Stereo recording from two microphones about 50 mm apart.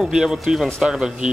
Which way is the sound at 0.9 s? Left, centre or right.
Centre.